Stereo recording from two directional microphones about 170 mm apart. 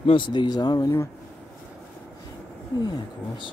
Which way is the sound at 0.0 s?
30° left (ahead or behind).